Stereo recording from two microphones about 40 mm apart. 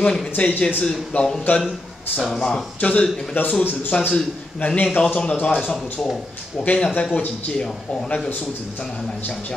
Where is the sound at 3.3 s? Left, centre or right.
Left.